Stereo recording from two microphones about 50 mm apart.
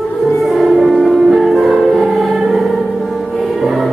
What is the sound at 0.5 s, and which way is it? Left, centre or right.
Music, centre.